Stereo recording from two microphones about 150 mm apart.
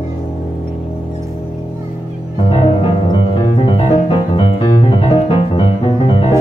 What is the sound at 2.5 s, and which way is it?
Music, 40° left (ahead or behind).